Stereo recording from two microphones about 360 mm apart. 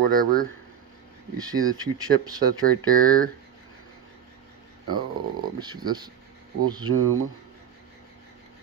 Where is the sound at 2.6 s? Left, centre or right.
Right.